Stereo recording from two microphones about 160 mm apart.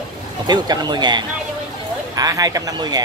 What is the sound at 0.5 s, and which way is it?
Speech, 25° right (ahead or behind).